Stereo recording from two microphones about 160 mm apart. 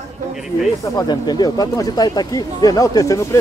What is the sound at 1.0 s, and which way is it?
Speech, 25° left (ahead or behind).